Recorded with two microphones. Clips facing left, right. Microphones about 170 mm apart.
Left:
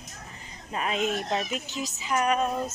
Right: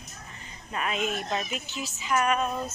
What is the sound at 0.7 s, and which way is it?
Speech, 25° left (ahead or behind).